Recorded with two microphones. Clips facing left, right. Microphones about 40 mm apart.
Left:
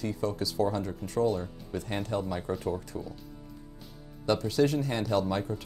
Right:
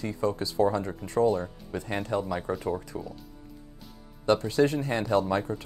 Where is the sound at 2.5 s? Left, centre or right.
Centre.